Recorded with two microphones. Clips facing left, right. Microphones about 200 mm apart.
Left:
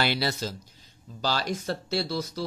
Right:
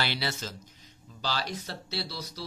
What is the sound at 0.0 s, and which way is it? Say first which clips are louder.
Speech: left 5 dB; 45° left (ahead or behind).